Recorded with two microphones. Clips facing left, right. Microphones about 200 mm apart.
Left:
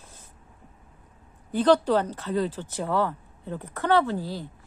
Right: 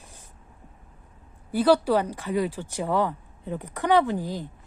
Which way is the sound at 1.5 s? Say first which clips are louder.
Even; 10° right (ahead or behind).